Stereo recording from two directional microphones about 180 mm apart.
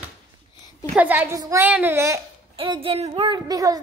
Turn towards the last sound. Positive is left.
turn(degrees=-20)  # may be behind; listen again after turning